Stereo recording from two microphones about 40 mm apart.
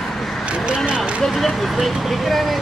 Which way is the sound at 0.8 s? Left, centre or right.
Right.